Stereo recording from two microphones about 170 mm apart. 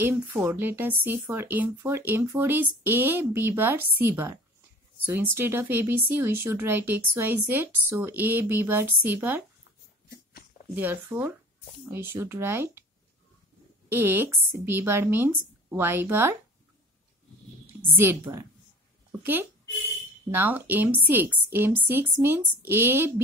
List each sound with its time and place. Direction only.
0.0 s speech: 10° right (ahead or behind)
10.8 s speech: 10° right (ahead or behind)
13.9 s speech: 10° right (ahead or behind)
18.0 s speech: 15° right (ahead or behind)
20.2 s speech: 10° right (ahead or behind)